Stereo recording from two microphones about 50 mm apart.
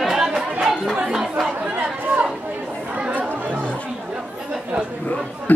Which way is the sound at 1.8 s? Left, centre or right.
Right.